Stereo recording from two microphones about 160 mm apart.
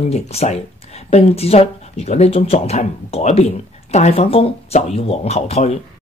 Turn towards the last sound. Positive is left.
turn(degrees=40)  # may be behind; listen again after turning